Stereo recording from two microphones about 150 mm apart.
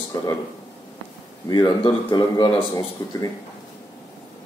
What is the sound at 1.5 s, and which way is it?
Speech, 30° left (ahead or behind).